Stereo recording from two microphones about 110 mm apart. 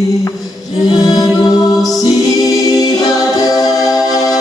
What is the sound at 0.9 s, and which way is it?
Music, 35° left (ahead or behind).